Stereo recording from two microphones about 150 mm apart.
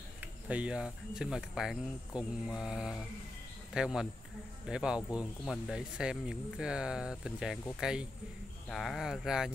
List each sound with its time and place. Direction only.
0.2 s speech: 10° right (ahead or behind)